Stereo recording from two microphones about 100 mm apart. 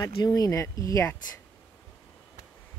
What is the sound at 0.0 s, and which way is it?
Speech, 35° left (ahead or behind).